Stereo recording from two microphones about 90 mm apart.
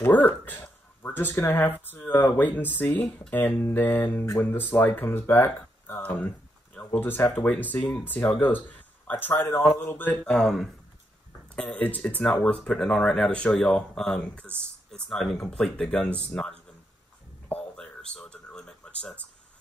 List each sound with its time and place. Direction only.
0.0 s speech: 20° left (ahead or behind)
7.3 s speech: 15° left (ahead or behind)
8.4 s a sound: 20° left (ahead or behind)
9.2 s speech: 20° left (ahead or behind)
10.2 s speech: 5° left (ahead or behind)
11.5 s speech: 15° left (ahead or behind)
17.5 s a sound: 10° left (ahead or behind)